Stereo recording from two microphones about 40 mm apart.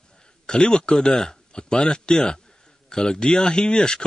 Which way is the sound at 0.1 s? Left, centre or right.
Left.